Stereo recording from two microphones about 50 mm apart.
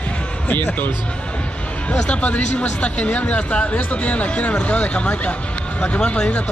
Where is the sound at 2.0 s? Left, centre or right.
Left.